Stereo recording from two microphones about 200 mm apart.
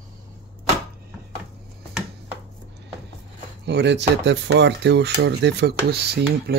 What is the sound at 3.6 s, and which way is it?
Speech, 60° right (ahead or behind).